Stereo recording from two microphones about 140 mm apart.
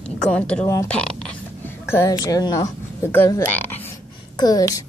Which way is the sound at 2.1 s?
25° left (ahead or behind).